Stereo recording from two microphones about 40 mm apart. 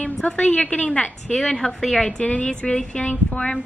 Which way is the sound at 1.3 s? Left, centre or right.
Centre.